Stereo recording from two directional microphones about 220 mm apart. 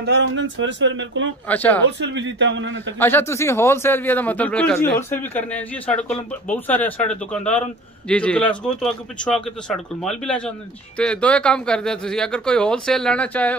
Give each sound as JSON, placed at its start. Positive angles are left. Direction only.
{"t": 0.0, "sound": "speech", "side_deg": -55}
{"t": 1.5, "sound": "a man's voice", "side_deg": 5}
{"t": 1.9, "sound": "speech", "side_deg": -55}
{"t": 3.0, "sound": "a man's voice", "side_deg": 10}